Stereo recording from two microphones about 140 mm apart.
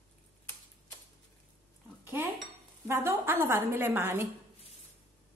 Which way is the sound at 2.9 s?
20° right (ahead or behind).